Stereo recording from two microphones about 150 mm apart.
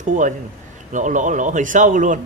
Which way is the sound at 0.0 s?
60° right (ahead or behind).